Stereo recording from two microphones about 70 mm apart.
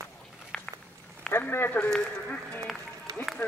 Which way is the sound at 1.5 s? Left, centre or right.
Left.